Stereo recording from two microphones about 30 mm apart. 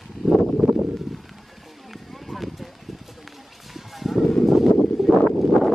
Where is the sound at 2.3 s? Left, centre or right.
Centre.